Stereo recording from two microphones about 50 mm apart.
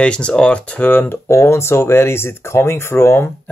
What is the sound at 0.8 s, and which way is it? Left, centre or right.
Speech, left.